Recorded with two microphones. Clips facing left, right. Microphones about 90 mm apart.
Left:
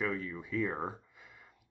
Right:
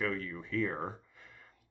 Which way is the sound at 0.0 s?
10° left (ahead or behind).